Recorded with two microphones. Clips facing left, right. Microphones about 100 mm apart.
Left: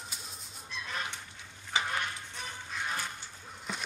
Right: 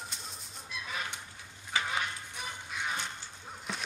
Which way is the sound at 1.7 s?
20° left (ahead or behind).